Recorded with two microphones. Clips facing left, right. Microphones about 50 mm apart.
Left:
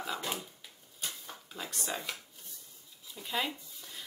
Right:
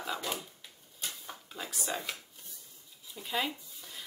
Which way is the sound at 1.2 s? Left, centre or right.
Centre.